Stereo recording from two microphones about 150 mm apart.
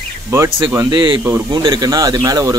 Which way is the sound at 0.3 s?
20° right (ahead or behind).